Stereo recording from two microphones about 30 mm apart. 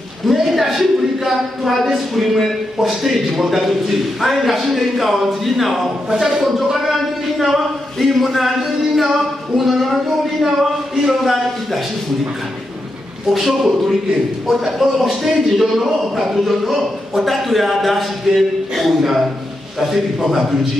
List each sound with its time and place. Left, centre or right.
0.3 s a man's voice: centre
6.0 s a man's voice: centre
10.4 s speech: centre
11.2 s a man's voice: centre
13.3 s a man's voice: centre